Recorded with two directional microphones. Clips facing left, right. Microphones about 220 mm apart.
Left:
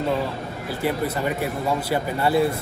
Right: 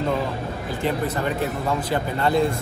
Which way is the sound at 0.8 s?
10° left (ahead or behind).